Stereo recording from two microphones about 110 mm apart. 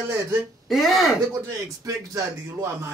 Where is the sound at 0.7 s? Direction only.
Centre (ahead or behind).